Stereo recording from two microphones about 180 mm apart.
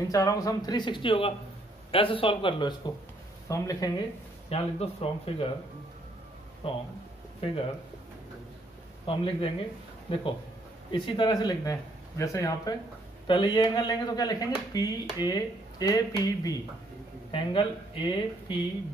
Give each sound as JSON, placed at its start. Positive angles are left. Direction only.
{"t": 0.1, "sound": "speech", "side_deg": 20}
{"t": 3.4, "sound": "speech", "side_deg": 20}
{"t": 4.5, "sound": "speech", "side_deg": 35}
{"t": 6.6, "sound": "speech", "side_deg": 35}
{"t": 9.0, "sound": "speech", "side_deg": 30}